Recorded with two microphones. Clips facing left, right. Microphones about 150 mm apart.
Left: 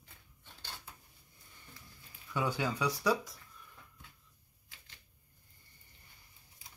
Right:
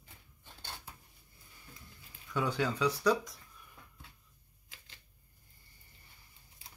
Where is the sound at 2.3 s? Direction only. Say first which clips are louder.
Right 1 dB; 10° left (ahead or behind).